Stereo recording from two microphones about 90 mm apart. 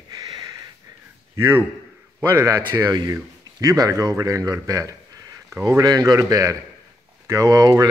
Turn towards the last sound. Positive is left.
turn(degrees=-40)  # may be behind; listen again after turning